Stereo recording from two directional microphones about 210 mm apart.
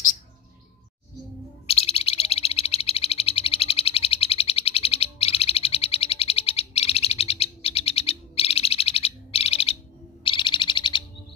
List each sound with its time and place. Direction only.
1.7 s bird: 30° left (ahead or behind)
10.2 s owl: 20° left (ahead or behind)